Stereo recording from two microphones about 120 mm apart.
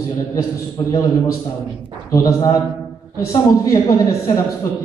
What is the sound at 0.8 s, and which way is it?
Speech, 45° left (ahead or behind).